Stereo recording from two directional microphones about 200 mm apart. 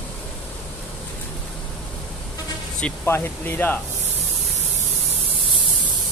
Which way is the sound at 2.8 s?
10° left (ahead or behind).